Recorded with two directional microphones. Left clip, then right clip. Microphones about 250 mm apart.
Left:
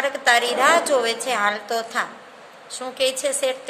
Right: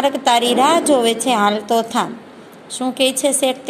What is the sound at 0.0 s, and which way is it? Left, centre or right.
A woman's voice, centre.